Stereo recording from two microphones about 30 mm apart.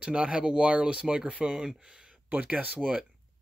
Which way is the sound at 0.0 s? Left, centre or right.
Right.